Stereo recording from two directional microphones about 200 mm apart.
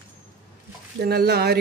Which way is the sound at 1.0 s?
55° right (ahead or behind).